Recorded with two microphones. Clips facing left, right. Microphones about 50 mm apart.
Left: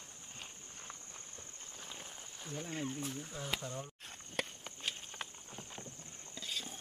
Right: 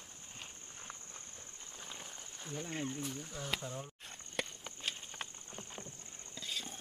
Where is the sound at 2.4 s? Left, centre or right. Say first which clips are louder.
Even; centre.